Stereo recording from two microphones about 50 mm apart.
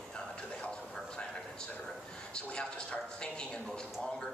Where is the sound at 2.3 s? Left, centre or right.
Centre.